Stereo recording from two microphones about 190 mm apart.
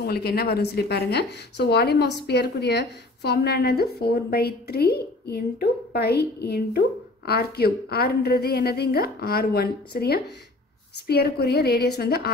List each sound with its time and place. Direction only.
0.0 s speech: 55° left (ahead or behind)